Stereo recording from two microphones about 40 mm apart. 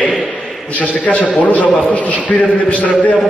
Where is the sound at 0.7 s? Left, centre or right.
Left.